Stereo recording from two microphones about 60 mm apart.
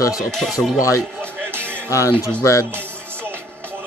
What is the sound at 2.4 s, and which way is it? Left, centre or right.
Speech, left.